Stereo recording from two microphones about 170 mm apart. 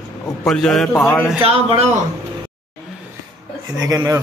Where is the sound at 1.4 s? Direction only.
35° right (ahead or behind).